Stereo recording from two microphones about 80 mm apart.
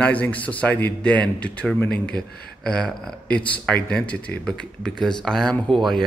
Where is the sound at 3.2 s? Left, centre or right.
Centre.